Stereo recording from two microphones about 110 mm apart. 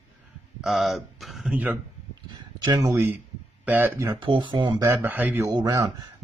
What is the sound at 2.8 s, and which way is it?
Speech, 20° right (ahead or behind).